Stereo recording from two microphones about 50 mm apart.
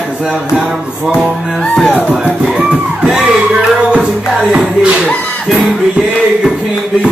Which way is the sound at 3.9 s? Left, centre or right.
Centre.